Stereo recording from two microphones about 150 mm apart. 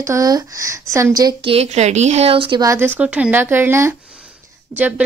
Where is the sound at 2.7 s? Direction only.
15° right (ahead or behind).